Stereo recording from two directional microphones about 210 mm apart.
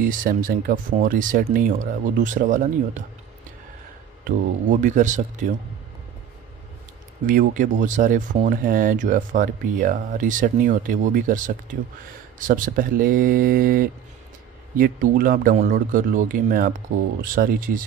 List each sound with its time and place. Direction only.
0.0 s speech: 40° right (ahead or behind)
4.2 s speech: 35° right (ahead or behind)
7.2 s speech: 40° right (ahead or behind)